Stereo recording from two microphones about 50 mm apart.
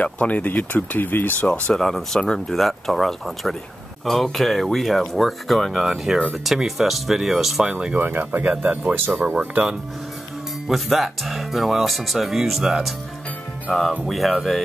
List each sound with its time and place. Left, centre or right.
0.0 s speech: left
1.5 s speech: centre
2.3 s speech: centre
7.6 s speech: right
8.0 s speech: right
8.4 s speech: right
10.7 s speech: centre